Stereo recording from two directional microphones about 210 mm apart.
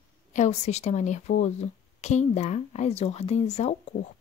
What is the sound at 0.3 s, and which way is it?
A woman's voice, 35° left (ahead or behind).